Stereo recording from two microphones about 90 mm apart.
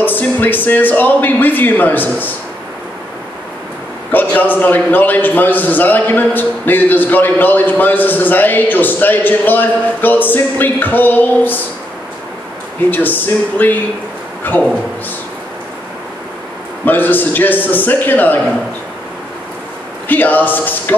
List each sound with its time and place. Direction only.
0.0 s a man's voice: 20° left (ahead or behind)
4.1 s a man's voice: 20° left (ahead or behind)
12.9 s a man's voice: 20° left (ahead or behind)
16.8 s a man's voice: 20° left (ahead or behind)
20.1 s a man's voice: 20° left (ahead or behind)